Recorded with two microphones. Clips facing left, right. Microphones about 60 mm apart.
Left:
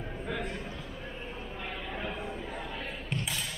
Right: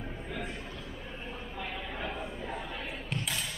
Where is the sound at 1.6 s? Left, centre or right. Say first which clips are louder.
Even; centre.